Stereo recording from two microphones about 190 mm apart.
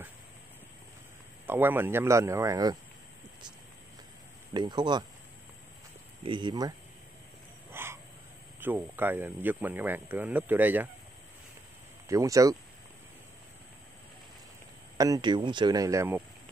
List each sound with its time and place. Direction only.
1.4 s speech: 10° right (ahead or behind)
4.6 s speech: 25° right (ahead or behind)
6.2 s speech: 25° right (ahead or behind)
7.7 s dog: 10° right (ahead or behind)
8.5 s speech: 10° right (ahead or behind)
12.1 s speech: 15° right (ahead or behind)
15.0 s speech: 20° right (ahead or behind)